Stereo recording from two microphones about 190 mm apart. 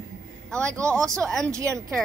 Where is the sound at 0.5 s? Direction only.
5° left (ahead or behind).